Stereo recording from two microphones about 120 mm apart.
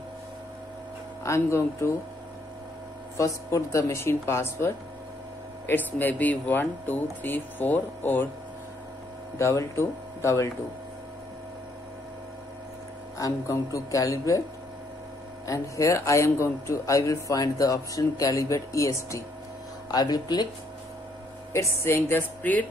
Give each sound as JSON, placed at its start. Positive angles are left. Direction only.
{"t": 1.2, "sound": "speech", "side_deg": 25}
{"t": 3.2, "sound": "speech", "side_deg": 25}
{"t": 9.4, "sound": "speech", "side_deg": 25}
{"t": 13.2, "sound": "speech", "side_deg": 25}
{"t": 15.4, "sound": "speech", "side_deg": 25}
{"t": 21.5, "sound": "speech", "side_deg": 20}